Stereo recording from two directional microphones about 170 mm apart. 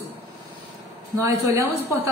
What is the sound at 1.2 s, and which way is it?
Speech, 15° right (ahead or behind).